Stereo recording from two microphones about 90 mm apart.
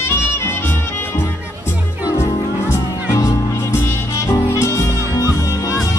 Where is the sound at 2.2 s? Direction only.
35° left (ahead or behind).